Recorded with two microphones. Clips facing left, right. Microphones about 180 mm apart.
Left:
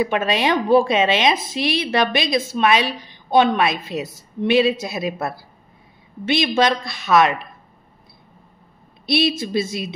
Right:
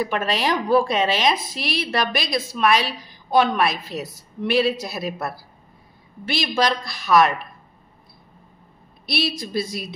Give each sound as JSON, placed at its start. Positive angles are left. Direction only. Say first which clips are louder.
{"t": 0.0, "sound": "a woman's voice", "louder": "left 3 dB", "side_deg": 20}
{"t": 9.0, "sound": "a woman's voice", "louder": "left 6 dB", "side_deg": 25}